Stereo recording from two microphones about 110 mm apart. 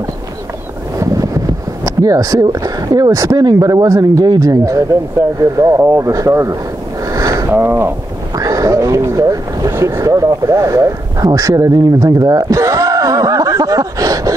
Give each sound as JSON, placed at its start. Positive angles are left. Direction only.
{"t": 0.9, "sound": "wind noise", "side_deg": -30}
{"t": 1.9, "sound": "speech", "side_deg": -30}
{"t": 7.2, "sound": "sniff", "side_deg": -30}
{"t": 7.5, "sound": "speech", "side_deg": -20}